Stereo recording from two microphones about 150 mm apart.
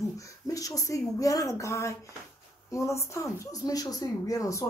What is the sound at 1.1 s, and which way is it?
Speech, 20° left (ahead or behind).